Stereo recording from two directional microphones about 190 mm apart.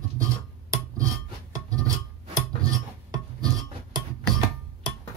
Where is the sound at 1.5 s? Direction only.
20° right (ahead or behind).